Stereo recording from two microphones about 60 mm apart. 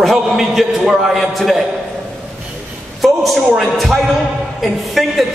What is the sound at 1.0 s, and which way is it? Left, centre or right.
Speech, centre.